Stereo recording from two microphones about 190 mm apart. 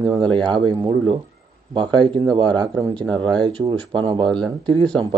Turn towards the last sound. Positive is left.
turn(degrees=-25)  # may be behind; listen again after turning